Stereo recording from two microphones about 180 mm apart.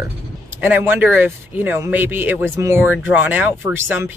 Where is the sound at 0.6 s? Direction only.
10° right (ahead or behind).